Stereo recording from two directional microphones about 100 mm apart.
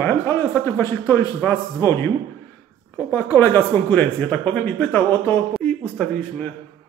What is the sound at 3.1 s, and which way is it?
Speech, 25° left (ahead or behind).